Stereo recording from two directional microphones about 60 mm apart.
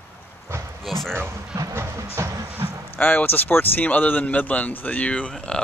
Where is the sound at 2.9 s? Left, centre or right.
Left.